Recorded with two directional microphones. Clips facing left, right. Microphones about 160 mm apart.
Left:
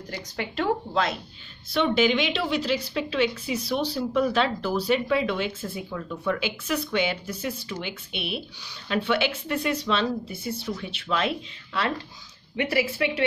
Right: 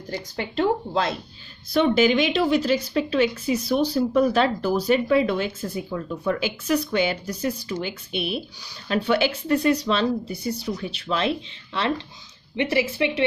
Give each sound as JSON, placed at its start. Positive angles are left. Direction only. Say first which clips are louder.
{"t": 0.1, "sound": "speech", "louder": "right 4 dB", "side_deg": -30}
{"t": 1.7, "sound": "a woman's voice", "louder": "right 3 dB", "side_deg": -45}